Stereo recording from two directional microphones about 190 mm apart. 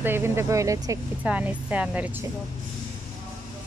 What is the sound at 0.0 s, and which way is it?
Speech, 10° right (ahead or behind).